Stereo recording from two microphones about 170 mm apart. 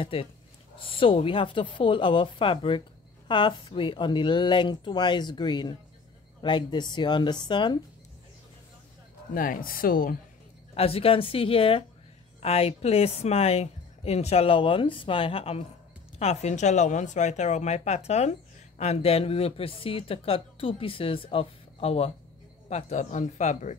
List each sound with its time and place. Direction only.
0.0 s speech: 35° left (ahead or behind)
9.3 s speech: 55° left (ahead or behind)
10.7 s speech: 35° left (ahead or behind)